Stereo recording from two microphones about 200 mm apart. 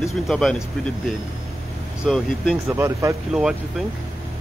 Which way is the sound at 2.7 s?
15° right (ahead or behind).